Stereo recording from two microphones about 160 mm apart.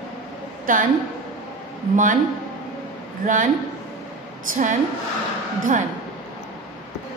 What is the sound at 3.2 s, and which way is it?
Speech, 55° right (ahead or behind).